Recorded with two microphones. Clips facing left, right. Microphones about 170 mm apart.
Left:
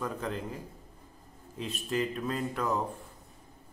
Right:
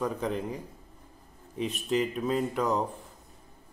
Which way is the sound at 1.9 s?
15° right (ahead or behind).